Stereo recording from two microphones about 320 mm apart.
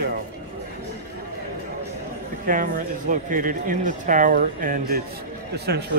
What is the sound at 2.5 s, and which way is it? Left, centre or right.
Speech, right.